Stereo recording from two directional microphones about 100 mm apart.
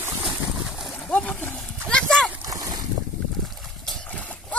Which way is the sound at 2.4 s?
35° right (ahead or behind).